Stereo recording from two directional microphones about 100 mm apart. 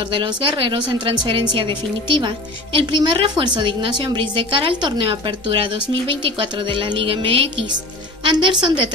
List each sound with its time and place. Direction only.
0.1 s a woman's voice: 60° right (ahead or behind)